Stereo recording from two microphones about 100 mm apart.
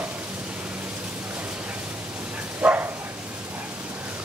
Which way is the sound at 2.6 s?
15° right (ahead or behind).